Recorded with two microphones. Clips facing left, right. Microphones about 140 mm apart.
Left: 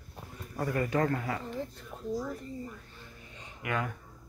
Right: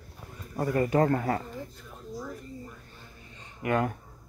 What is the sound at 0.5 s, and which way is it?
Speech, 30° right (ahead or behind).